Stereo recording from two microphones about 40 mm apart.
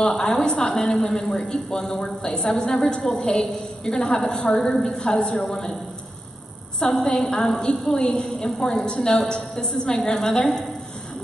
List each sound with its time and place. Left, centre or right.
0.0 s a woman's voice: centre
6.9 s a woman's voice: centre